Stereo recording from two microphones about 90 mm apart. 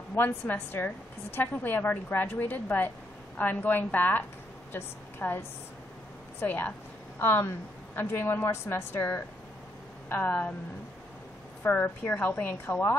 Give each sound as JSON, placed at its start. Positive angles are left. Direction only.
{"t": 0.1, "sound": "a woman's voice", "side_deg": 25}
{"t": 6.4, "sound": "a woman's voice", "side_deg": 20}
{"t": 11.6, "sound": "a woman's voice", "side_deg": 20}